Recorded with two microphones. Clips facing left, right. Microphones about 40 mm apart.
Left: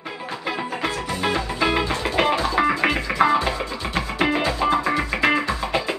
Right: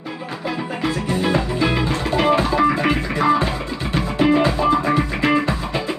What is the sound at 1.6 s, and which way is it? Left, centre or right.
Music, centre.